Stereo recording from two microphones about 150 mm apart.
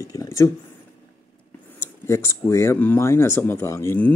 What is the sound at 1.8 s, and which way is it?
Speech, 15° left (ahead or behind).